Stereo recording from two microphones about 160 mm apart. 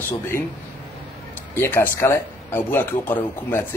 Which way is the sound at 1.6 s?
15° left (ahead or behind).